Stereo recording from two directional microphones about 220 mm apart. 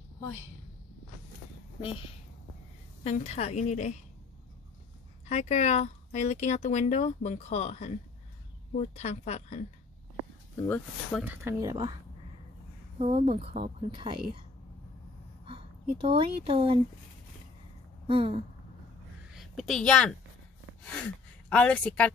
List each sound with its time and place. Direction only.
3.0 s speech: 30° left (ahead or behind)
5.2 s speech: 30° left (ahead or behind)
10.7 s speech: 5° left (ahead or behind)
11.2 s speech: 15° right (ahead or behind)
13.0 s a woman's voice: 25° right (ahead or behind)
15.4 s speech: 25° right (ahead or behind)
18.0 s a woman's voice: 25° right (ahead or behind)
19.3 s a woman's voice: centre (ahead or behind)